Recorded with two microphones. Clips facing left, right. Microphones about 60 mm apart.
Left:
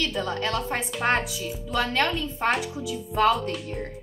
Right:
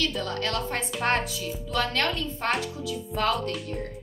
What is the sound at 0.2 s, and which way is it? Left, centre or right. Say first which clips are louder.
A woman's voice: left 2 dB; centre.